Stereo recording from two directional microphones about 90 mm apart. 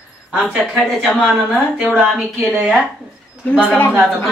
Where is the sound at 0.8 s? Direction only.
Centre (ahead or behind).